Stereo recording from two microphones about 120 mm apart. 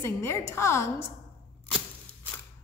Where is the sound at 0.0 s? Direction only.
20° left (ahead or behind).